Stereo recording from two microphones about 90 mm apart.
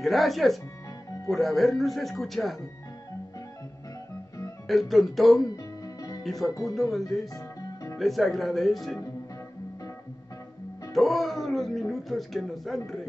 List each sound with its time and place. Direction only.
0.0 s speech: centre (ahead or behind)
4.6 s speech: centre (ahead or behind)
7.3 s music: 35° left (ahead or behind)
8.0 s speech: centre (ahead or behind)
10.9 s speech: centre (ahead or behind)